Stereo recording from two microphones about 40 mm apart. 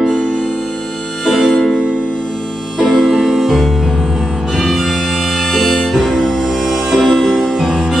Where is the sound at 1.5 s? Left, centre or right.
Centre.